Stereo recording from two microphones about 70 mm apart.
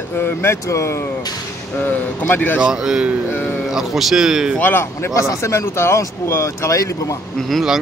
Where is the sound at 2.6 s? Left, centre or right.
Centre.